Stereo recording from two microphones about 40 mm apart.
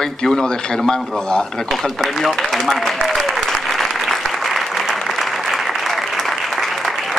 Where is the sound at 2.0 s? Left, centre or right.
Centre.